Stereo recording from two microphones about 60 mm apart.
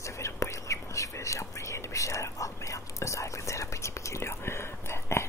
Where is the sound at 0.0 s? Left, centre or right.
Left.